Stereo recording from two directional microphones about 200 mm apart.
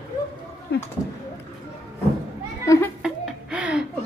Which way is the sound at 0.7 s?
55° left (ahead or behind).